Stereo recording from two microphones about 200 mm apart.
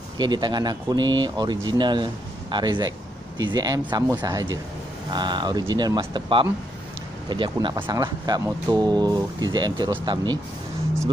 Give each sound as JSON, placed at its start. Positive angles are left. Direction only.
{"t": 0.2, "sound": "speech", "side_deg": -20}